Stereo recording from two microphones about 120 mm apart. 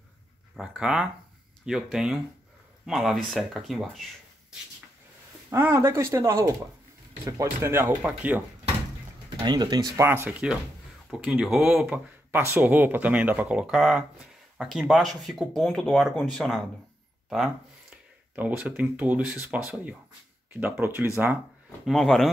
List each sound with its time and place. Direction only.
0.6 s speech: 5° right (ahead or behind)
5.5 s speech: 20° right (ahead or behind)
9.4 s speech: 35° right (ahead or behind)
9.9 s speech: 20° right (ahead or behind)
11.1 s speech: centre (ahead or behind)
11.8 s speech: 15° right (ahead or behind)
21.8 s speech: 5° left (ahead or behind)